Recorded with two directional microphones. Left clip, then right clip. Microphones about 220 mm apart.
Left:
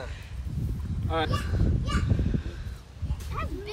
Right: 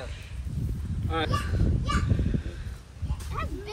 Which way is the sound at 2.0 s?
15° left (ahead or behind).